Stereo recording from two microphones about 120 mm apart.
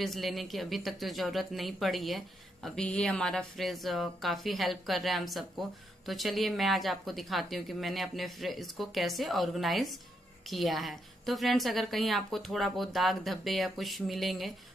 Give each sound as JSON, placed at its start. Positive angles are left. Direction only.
{"t": 0.0, "sound": "speech", "side_deg": 0}